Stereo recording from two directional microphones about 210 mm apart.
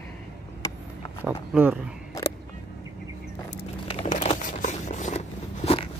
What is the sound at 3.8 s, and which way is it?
Crumpling, 30° left (ahead or behind).